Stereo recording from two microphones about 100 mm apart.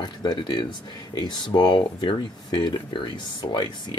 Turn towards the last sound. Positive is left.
turn(degrees=45)  # may be behind; listen again after turning